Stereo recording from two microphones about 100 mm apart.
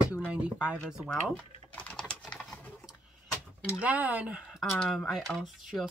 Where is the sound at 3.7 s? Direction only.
15° right (ahead or behind).